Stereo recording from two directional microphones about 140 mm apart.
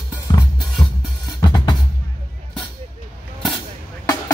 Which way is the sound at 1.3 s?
30° left (ahead or behind).